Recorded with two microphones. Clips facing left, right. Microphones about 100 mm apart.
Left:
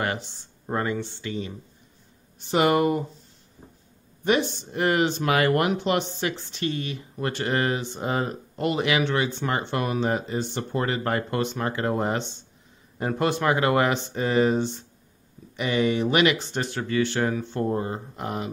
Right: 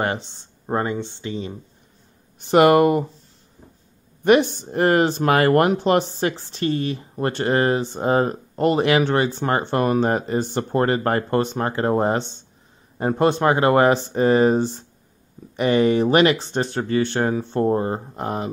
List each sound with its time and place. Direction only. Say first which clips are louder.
0.0 s speech: right 4 dB; 25° right (ahead or behind)
2.3 s speech: right 7 dB; 60° right (ahead or behind)
4.2 s speech: right 7 dB; 65° right (ahead or behind)
4.5 s speech: right 6 dB; 45° right (ahead or behind)